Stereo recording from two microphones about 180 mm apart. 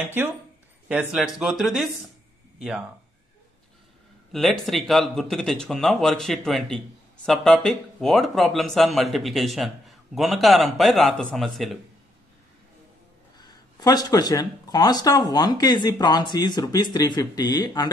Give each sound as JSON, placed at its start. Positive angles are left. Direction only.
{"t": 1.1, "sound": "speech", "side_deg": 0}
{"t": 4.3, "sound": "speech", "side_deg": 0}
{"t": 13.4, "sound": "speech", "side_deg": 20}